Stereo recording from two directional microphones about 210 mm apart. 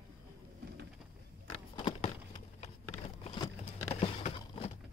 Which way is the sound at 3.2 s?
30° left (ahead or behind).